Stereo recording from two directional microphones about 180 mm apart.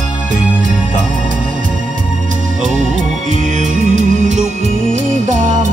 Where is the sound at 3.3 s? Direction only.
40° right (ahead or behind).